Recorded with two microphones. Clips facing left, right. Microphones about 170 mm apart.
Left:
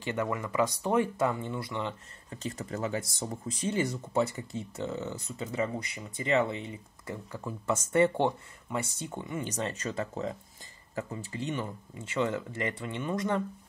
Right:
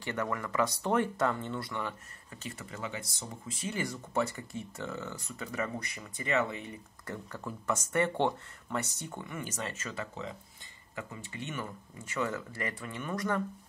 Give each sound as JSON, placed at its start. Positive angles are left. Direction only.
{"t": 0.0, "sound": "speech", "side_deg": 20}
{"t": 2.3, "sound": "speech", "side_deg": 35}
{"t": 9.5, "sound": "speech", "side_deg": 35}
{"t": 12.1, "sound": "speech", "side_deg": 20}